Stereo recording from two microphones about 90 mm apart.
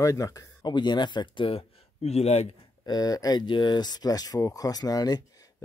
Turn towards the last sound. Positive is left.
turn(degrees=45)  # may be behind; listen again after turning